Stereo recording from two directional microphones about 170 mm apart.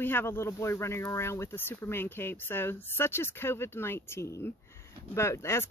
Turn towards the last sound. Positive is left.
turn(degrees=15)  # may be behind; listen again after turning